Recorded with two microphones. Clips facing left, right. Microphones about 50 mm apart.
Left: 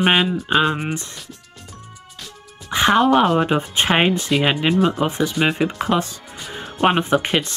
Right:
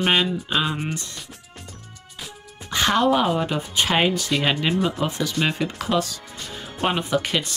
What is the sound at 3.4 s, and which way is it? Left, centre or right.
Speech, left.